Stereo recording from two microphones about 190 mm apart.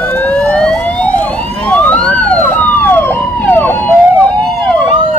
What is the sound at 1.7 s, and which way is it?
Police car, 10° left (ahead or behind).